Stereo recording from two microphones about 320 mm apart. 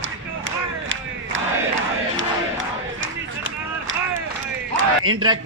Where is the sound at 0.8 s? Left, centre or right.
Right.